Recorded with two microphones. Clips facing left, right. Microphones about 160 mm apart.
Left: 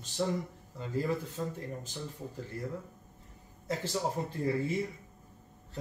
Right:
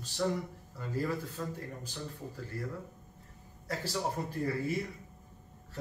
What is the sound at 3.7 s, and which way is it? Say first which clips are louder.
Speech: left 3 dB; 20° left (ahead or behind).